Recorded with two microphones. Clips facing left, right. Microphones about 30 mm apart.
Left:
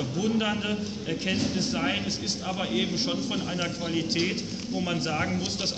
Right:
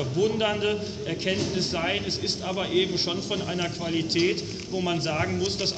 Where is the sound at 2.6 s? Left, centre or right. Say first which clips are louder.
Right 4 dB; centre.